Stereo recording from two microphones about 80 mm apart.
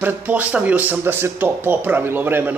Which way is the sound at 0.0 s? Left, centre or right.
Right.